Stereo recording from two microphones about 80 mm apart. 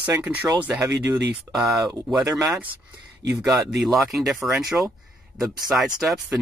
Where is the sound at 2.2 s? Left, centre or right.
Right.